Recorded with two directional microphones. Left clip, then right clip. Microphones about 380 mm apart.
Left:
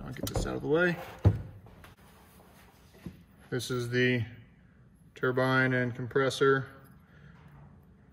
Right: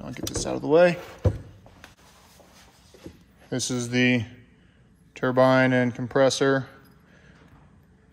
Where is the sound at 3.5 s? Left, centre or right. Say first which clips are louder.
Right 5 dB; centre.